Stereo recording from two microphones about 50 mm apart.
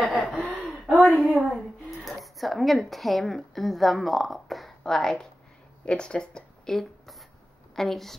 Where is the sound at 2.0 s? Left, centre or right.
Centre.